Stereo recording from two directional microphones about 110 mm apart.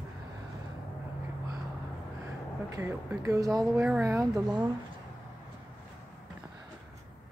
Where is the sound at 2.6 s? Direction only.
30° right (ahead or behind).